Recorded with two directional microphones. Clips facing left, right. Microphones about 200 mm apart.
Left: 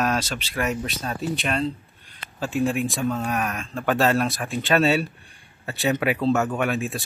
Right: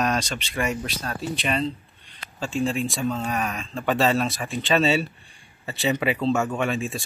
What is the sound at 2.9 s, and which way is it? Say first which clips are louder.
Speech: left 1 dB; centre (ahead or behind).